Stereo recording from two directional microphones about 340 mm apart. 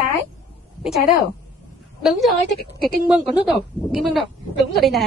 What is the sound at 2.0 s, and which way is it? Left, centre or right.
A woman's voice, centre.